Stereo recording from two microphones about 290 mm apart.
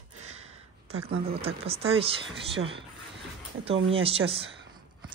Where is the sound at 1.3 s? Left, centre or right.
Centre.